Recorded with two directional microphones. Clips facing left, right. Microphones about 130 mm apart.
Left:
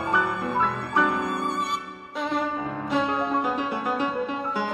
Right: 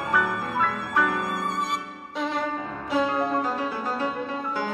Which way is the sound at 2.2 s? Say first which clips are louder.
Left 1 dB; centre (ahead or behind).